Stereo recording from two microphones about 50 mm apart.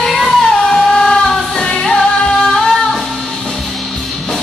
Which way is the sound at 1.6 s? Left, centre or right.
Centre.